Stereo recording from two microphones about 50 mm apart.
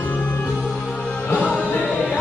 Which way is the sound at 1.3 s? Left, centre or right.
Left.